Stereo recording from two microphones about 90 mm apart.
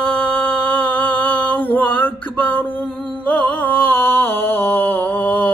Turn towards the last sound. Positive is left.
turn(degrees=20)  # may be behind; listen again after turning